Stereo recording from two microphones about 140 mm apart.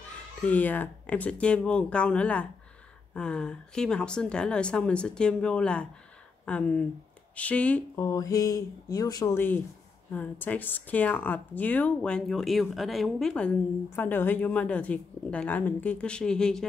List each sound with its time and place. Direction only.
0.4 s speech: 10° left (ahead or behind)
7.9 s speech: 25° left (ahead or behind); by 16.6 s 5° left (ahead or behind)